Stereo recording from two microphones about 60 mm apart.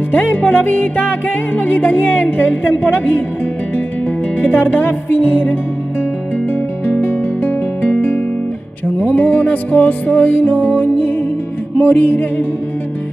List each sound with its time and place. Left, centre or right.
0.7 s speech: left
4.4 s speech: left
6.9 s music: left